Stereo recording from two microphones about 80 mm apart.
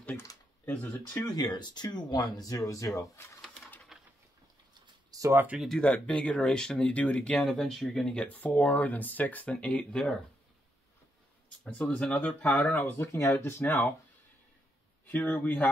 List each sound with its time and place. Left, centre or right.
0.7 s speech: left
1.2 s speech: left
3.9 s a sound: centre
5.1 s a sound: right
5.8 s speech: centre
7.4 s speech: centre
11.6 s speech: centre
15.0 s speech: left